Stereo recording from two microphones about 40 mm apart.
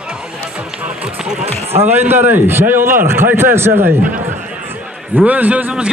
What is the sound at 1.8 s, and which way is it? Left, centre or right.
A man's voice, right.